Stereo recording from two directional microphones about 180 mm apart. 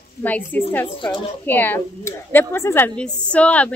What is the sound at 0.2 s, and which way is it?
Speech, 10° left (ahead or behind).